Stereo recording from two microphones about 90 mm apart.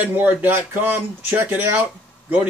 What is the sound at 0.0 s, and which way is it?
Speech, 20° right (ahead or behind).